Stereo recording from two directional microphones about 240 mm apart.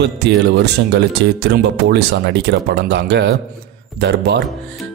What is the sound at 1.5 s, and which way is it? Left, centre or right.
Speech, right.